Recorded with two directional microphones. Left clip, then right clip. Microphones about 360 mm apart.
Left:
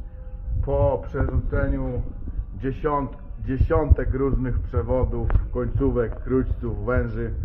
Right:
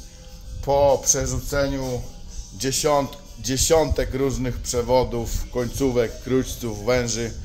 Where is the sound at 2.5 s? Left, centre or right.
Centre.